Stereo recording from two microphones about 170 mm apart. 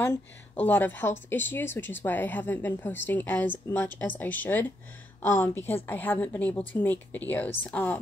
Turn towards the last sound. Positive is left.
turn(degrees=10)  # may be behind; listen again after turning